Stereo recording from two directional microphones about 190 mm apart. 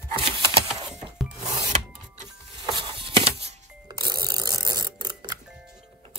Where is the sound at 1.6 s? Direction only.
40° right (ahead or behind).